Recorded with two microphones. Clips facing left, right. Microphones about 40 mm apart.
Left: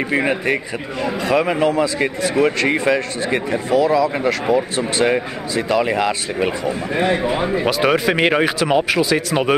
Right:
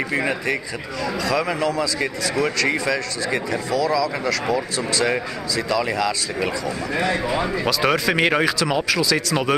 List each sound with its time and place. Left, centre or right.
0.1 s speech: left
8.5 s speech: left